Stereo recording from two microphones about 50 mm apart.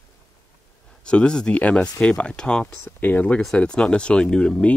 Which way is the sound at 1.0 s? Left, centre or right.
Centre.